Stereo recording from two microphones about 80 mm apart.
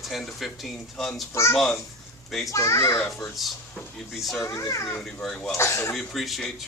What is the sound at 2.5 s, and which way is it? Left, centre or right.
Speech, left.